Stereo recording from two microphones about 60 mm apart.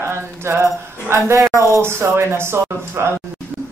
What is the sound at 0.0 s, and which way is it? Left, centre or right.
Speech, right.